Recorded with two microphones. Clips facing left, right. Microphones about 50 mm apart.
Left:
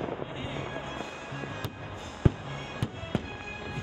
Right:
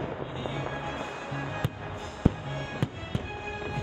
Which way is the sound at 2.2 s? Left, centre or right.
Left.